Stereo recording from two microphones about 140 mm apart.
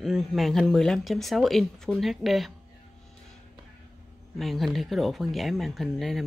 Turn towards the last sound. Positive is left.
turn(degrees=0)  # may be behind; listen again after turning